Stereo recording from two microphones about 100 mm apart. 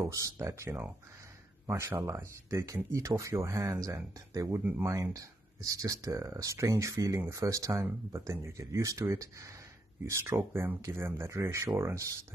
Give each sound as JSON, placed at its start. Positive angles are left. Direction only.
{"t": 0.0, "sound": "speech", "side_deg": -30}